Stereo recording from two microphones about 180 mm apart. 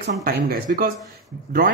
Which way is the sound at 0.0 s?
60° right (ahead or behind).